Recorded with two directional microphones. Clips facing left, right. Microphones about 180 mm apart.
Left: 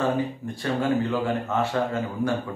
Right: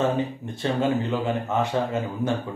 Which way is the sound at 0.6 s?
20° right (ahead or behind).